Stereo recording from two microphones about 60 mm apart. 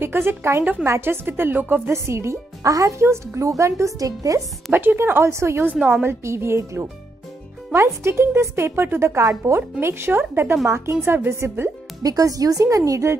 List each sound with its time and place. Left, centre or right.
0.0 s speech: right
0.8 s speech: right
1.1 s speech: right
1.9 s speech: right
4.7 s speech: right
9.8 s speech: right
12.0 s a woman's voice: right